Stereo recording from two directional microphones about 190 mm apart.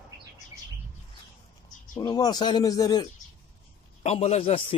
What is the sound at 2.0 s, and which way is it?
Speech, 20° left (ahead or behind).